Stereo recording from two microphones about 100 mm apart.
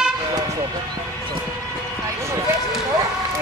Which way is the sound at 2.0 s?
30° right (ahead or behind).